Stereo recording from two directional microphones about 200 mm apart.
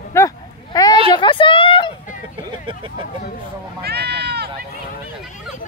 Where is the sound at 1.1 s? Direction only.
25° left (ahead or behind).